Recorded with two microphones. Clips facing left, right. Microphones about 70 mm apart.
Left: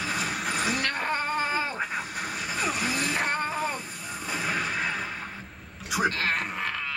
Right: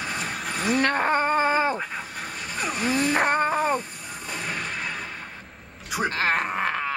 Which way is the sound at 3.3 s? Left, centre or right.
Right.